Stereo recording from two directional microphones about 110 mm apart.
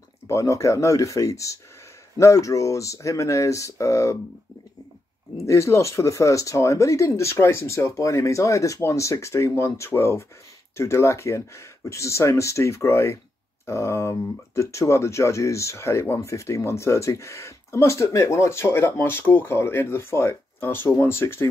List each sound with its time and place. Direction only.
0.3 s speech: 25° left (ahead or behind)
5.4 s speech: 25° left (ahead or behind)